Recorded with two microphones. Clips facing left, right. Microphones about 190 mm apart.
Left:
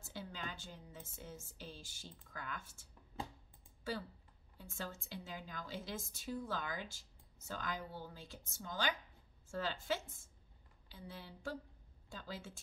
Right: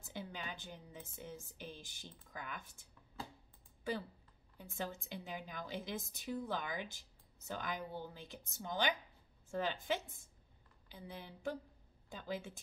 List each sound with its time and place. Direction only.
0.0 s a woman's voice: 15° right (ahead or behind)
4.6 s a woman's voice: 15° right (ahead or behind)